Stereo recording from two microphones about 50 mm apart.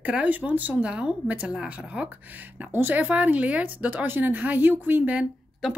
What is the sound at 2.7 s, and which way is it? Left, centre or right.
Speech, right.